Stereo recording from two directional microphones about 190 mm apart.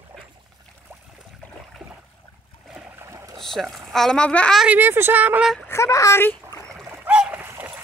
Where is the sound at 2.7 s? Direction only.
15° right (ahead or behind).